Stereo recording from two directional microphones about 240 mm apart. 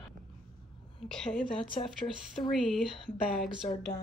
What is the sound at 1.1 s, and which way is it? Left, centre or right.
Speech, centre.